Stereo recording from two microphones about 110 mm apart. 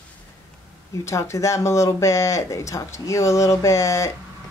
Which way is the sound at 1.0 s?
25° left (ahead or behind).